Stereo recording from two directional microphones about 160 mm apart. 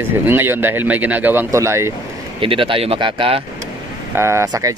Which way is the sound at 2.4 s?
35° right (ahead or behind).